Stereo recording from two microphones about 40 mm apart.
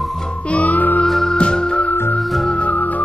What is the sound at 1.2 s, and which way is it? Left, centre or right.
Music, centre.